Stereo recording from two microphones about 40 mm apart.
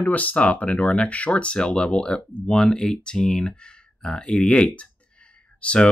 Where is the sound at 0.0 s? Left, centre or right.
Left.